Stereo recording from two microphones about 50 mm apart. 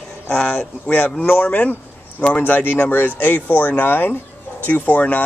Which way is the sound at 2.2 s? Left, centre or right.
Left.